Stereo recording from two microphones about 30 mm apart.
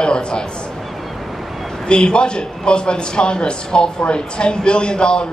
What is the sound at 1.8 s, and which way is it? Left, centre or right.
A man's voice, left.